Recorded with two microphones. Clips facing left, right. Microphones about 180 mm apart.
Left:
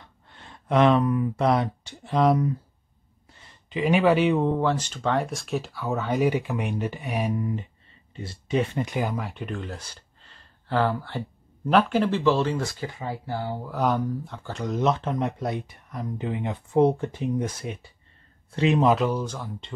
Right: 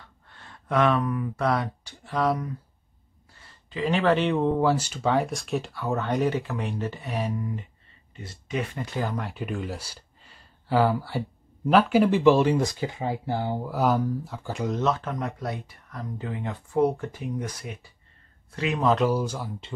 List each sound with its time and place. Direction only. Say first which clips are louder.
0.3 s speech: left 3 dB; 20° left (ahead or behind)
4.6 s speech: right 2 dB; 5° right (ahead or behind); by 7.5 s 15° left (ahead or behind)
8.2 s speech: left 5 dB; 30° left (ahead or behind)
8.8 s speech: left 2 dB; 15° left (ahead or behind)
9.2 s speech: right 1 dB; 5° right (ahead or behind); by 13.6 s 20° right (ahead or behind)
13.7 s speech: even; 5° right (ahead or behind)
14.8 s speech: left 6 dB; 20° left (ahead or behind)
18.9 s speech: right 2 dB; 5° right (ahead or behind)